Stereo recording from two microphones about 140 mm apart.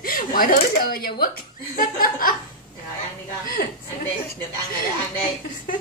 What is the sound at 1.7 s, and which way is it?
Laughter, 80° left.